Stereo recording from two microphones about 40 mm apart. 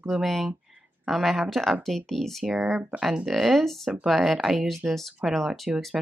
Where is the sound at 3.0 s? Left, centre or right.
Centre.